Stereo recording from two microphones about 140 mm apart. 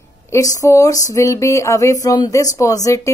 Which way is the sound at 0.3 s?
25° left (ahead or behind).